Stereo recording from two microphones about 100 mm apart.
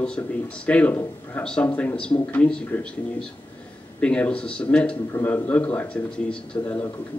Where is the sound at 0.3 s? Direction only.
10° left (ahead or behind).